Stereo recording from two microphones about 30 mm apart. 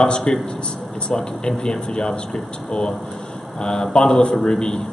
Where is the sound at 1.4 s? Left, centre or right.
Left.